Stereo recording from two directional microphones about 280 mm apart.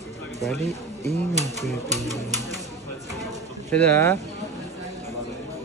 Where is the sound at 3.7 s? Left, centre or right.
Centre.